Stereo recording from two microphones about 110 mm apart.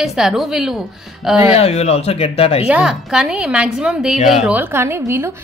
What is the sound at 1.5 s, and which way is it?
Speech, 75° left (ahead or behind).